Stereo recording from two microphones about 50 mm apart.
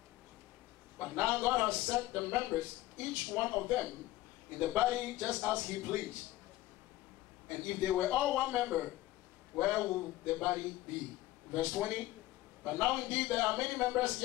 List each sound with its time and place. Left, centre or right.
0.9 s a man's voice: right
1.7 s speech: right
2.0 s a man's voice: right
2.6 s speech: right
3.3 s a man's voice: right
5.3 s speech: right
5.9 s speech: right
7.4 s a man's voice: right